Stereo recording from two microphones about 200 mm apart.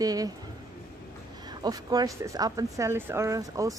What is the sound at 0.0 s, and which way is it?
Speech, 20° right (ahead or behind).